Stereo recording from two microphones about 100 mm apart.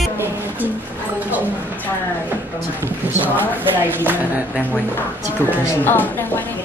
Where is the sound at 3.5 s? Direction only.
20° right (ahead or behind).